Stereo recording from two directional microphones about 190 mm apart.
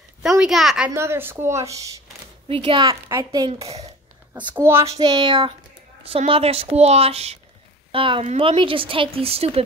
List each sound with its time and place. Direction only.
0.2 s a woman's voice: centre (ahead or behind)
2.4 s speech: 30° right (ahead or behind)
3.1 s a woman's voice: 15° right (ahead or behind)
3.6 s speech: 35° right (ahead or behind)
4.3 s a woman's voice: 10° right (ahead or behind)
5.0 s a woman's voice: 25° right (ahead or behind)